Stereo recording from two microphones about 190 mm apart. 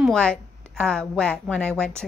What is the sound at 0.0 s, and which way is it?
A woman's voice, 5° left (ahead or behind).